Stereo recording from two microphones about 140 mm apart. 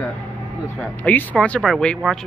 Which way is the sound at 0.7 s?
10° left (ahead or behind).